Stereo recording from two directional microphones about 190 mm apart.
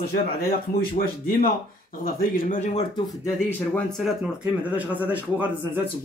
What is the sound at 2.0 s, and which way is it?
Speech, 50° left (ahead or behind).